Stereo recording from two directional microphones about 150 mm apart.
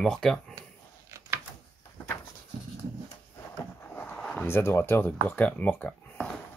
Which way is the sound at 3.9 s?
10° left (ahead or behind).